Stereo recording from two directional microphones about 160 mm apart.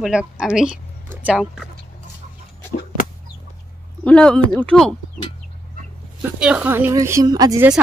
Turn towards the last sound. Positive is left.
turn(degrees=-25)  # may be behind; listen again after turning